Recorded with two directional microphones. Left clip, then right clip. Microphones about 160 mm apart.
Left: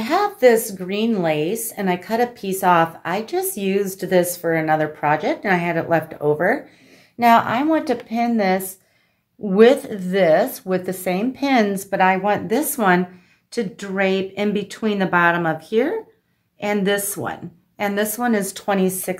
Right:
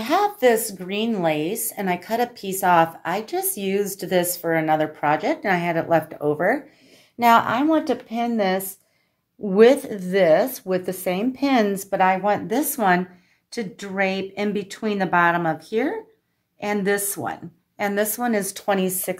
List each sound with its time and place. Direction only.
0.0 s a woman's voice: 40° right (ahead or behind)